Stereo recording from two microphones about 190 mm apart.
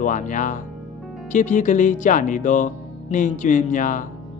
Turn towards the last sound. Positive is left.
turn(degrees=45)  # may be behind; listen again after turning